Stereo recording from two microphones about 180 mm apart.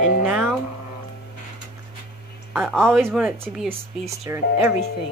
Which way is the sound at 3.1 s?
5° right (ahead or behind).